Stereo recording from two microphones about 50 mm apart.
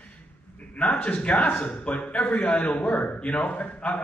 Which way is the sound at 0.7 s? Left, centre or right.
Left.